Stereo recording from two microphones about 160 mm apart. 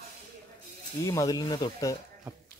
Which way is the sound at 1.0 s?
20° left (ahead or behind).